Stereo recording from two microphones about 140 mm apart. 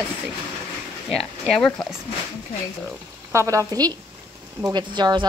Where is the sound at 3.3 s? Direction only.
20° right (ahead or behind).